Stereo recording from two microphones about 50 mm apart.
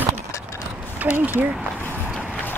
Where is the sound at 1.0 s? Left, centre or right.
Right.